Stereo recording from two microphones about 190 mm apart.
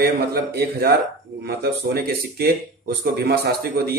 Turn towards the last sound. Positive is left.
turn(degrees=-55)  # may be behind; listen again after turning